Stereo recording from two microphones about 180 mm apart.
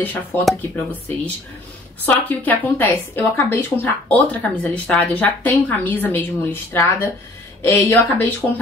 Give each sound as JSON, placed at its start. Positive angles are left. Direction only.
{"t": 0.0, "sound": "speech", "side_deg": 10}